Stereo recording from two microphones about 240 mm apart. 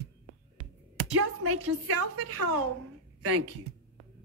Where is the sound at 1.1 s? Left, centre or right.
Right.